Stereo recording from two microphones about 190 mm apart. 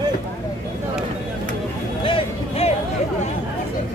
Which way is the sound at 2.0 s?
30° left (ahead or behind).